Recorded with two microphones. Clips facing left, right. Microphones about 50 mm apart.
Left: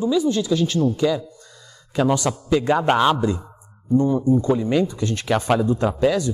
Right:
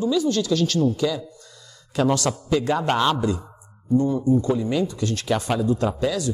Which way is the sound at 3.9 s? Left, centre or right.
Left.